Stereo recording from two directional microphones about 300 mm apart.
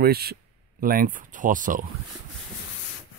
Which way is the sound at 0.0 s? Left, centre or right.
Right.